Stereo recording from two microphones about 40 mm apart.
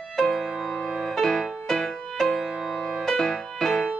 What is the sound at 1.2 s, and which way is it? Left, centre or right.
Music, centre.